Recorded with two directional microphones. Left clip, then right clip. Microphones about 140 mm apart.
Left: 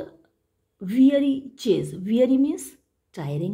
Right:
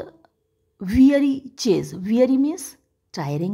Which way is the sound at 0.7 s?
40° right (ahead or behind).